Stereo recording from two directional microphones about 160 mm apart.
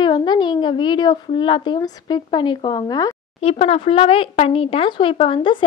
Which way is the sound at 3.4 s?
40° left (ahead or behind).